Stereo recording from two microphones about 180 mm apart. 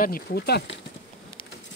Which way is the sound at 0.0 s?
60° left (ahead or behind).